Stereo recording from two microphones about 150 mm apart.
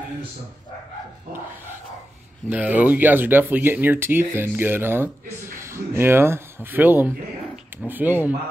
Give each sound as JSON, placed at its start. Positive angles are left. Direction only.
{"t": 2.5, "sound": "speech", "side_deg": -10}